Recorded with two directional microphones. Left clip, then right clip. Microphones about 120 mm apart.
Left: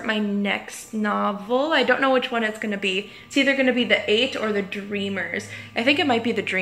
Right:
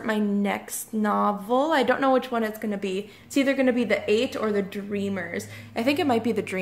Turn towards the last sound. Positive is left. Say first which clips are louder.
# left 2 dB
turn(degrees=-25)  # may be behind; listen again after turning